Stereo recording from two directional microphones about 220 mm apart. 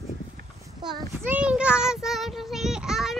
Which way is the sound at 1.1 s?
10° right (ahead or behind).